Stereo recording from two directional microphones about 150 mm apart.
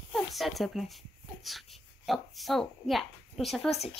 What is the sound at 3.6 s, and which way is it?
Speech, 45° left (ahead or behind).